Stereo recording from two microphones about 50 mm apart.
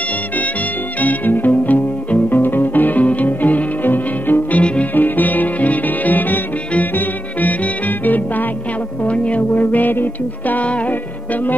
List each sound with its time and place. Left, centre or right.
1.0 s music: left
4.9 s music: left
9.0 s music: left